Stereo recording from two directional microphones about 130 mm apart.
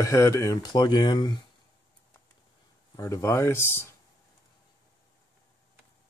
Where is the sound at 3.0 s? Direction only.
25° left (ahead or behind).